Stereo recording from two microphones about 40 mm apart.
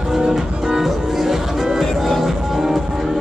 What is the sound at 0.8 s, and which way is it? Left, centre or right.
Music, centre.